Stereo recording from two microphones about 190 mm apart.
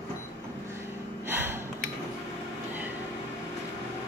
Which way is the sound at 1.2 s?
10° right (ahead or behind).